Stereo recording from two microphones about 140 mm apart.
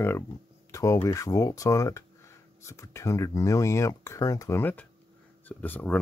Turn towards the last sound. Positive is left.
turn(degrees=15)  # may be behind; listen again after turning